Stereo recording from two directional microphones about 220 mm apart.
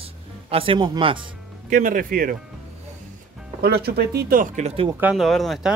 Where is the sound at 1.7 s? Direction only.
40° right (ahead or behind).